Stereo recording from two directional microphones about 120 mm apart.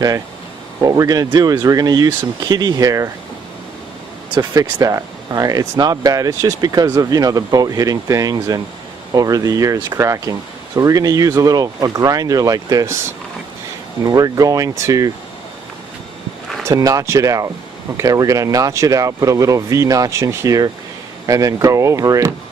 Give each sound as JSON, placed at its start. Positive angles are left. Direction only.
{"t": 0.8, "sound": "speech", "side_deg": -30}
{"t": 4.8, "sound": "speech", "side_deg": -30}
{"t": 14.0, "sound": "speech", "side_deg": -30}
{"t": 16.6, "sound": "speech", "side_deg": -30}